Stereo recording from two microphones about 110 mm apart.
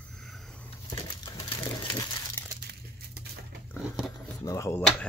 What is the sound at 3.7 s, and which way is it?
Biting, centre (ahead or behind).